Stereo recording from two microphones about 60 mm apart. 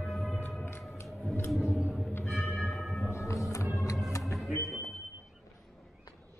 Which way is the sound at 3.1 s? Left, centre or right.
Left.